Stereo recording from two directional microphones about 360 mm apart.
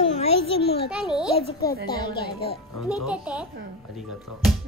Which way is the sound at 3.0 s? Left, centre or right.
Centre.